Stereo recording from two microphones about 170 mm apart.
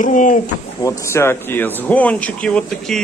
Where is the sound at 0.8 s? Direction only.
15° left (ahead or behind).